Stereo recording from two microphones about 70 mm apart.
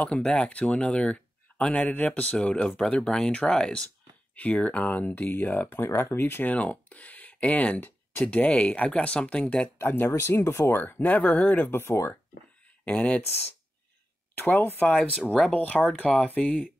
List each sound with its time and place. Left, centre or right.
0.0 s speech: centre
9.8 s speech: left
12.8 s speech: centre
14.3 s speech: left